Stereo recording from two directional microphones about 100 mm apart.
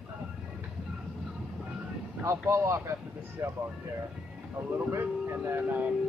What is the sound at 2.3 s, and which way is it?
Speech, 25° right (ahead or behind).